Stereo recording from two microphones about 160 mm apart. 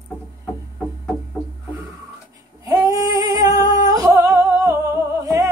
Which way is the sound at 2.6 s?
20° right (ahead or behind).